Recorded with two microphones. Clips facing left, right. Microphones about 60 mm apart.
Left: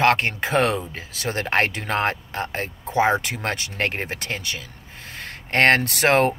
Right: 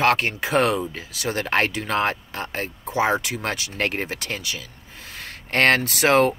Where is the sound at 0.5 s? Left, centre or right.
Left.